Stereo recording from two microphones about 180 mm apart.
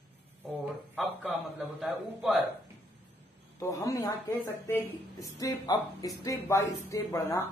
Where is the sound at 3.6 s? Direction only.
20° left (ahead or behind).